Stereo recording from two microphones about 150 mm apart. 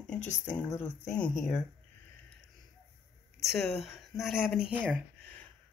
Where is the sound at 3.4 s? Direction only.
Centre (ahead or behind).